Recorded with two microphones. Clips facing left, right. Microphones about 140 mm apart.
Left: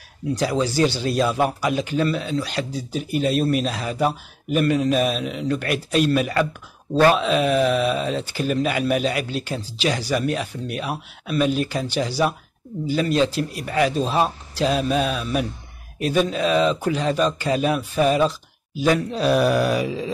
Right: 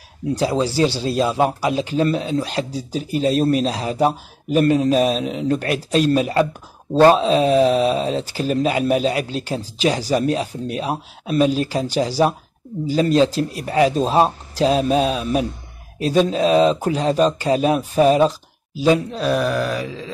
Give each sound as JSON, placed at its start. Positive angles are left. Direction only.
{"t": 0.3, "sound": "a man's voice", "side_deg": -30}
{"t": 19.1, "sound": "groan", "side_deg": 5}